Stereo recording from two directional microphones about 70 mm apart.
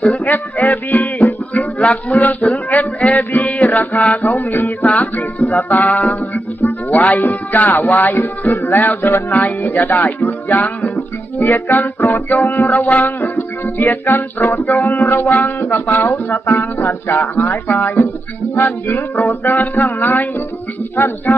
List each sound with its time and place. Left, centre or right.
0.0 s music: left